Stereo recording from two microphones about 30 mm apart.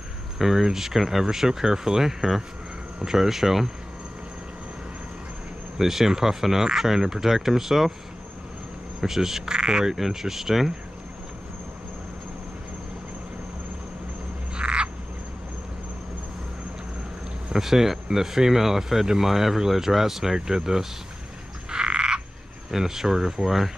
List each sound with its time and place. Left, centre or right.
0.4 s speech: centre
5.8 s speech: centre
9.0 s speech: centre
9.5 s speech: right
9.9 s speech: centre
14.5 s frog: right
17.5 s speech: centre
21.6 s frog: right
22.7 s speech: centre